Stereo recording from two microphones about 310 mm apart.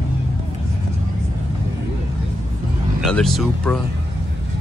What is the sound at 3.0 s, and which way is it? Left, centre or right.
Speech, centre.